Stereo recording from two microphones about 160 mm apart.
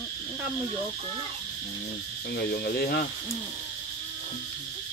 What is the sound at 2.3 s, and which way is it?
Speech, 75° left (ahead or behind).